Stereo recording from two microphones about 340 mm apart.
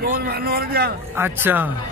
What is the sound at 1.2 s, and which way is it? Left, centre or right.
Speech, centre.